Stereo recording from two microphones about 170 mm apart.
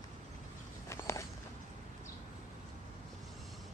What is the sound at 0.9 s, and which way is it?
Walk, 15° left (ahead or behind).